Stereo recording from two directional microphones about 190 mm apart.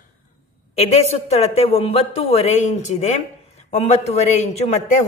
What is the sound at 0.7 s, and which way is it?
A man's voice, 35° left (ahead or behind).